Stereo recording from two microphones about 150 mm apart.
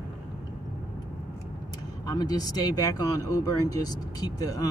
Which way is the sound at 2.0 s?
25° left (ahead or behind).